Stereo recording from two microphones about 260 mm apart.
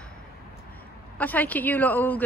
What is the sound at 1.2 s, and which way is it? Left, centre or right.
A woman's voice, centre.